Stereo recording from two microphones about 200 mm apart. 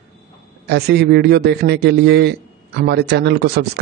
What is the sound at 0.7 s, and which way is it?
A man's voice, 55° right (ahead or behind).